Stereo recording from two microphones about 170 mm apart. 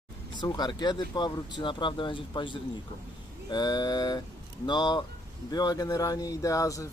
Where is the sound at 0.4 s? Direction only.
25° left (ahead or behind).